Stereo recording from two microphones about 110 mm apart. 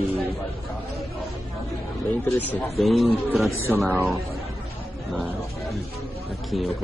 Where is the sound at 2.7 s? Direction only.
Centre (ahead or behind).